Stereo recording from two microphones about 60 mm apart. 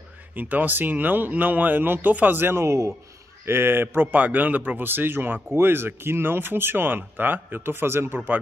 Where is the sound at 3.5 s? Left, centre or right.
Right.